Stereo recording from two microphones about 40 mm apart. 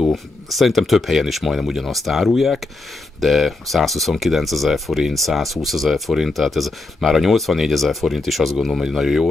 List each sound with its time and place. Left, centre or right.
0.0 s speech: centre